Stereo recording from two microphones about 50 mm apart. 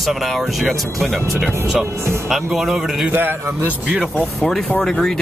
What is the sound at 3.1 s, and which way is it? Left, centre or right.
Speech, right.